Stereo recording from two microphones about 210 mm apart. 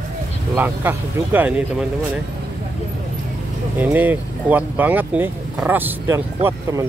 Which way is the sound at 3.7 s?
10° right (ahead or behind).